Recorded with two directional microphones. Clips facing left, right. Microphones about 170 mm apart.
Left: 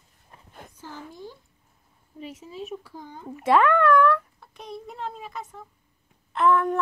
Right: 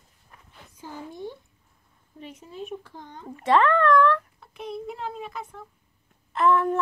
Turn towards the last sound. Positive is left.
turn(degrees=0)  # may be behind; listen again after turning